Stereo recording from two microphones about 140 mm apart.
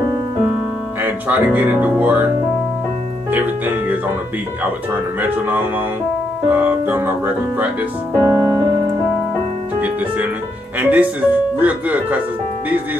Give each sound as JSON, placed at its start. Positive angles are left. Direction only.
{"t": 1.0, "sound": "speech", "side_deg": -10}
{"t": 3.3, "sound": "speech", "side_deg": -15}
{"t": 6.5, "sound": "speech", "side_deg": -15}
{"t": 8.3, "sound": "keyboard", "side_deg": -20}
{"t": 10.8, "sound": "speech", "side_deg": -10}